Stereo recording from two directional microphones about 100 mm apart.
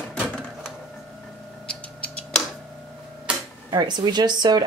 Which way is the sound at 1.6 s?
10° left (ahead or behind).